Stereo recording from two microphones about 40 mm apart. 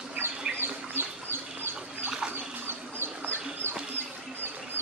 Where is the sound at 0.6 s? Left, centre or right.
Right.